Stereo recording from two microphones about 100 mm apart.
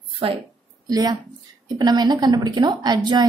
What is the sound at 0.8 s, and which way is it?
A woman's voice, 40° right (ahead or behind).